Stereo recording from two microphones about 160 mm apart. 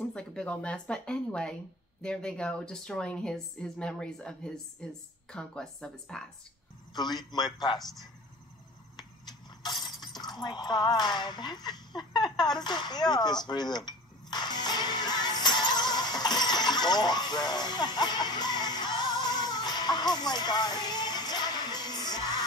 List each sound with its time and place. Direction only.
0.1 s speech: 5° left (ahead or behind)
6.9 s a man's voice: 25° left (ahead or behind)
9.6 s breaking: 25° left (ahead or behind)